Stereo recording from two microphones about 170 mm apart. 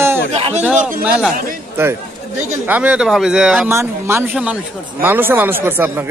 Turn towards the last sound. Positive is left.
turn(degrees=-10)  # may be behind; listen again after turning